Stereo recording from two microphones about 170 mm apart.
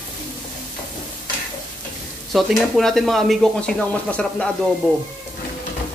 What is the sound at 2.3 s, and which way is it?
Speech, centre (ahead or behind).